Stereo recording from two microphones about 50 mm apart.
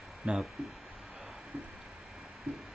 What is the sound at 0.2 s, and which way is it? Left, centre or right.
Speech, centre.